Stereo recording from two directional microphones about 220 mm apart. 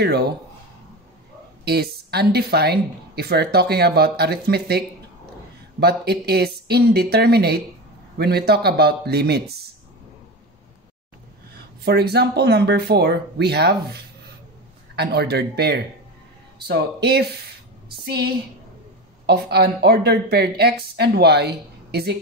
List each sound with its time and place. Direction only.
0.0 s speech: 45° right (ahead or behind)
1.6 s speech: 45° right (ahead or behind)
11.8 s speech: 45° right (ahead or behind)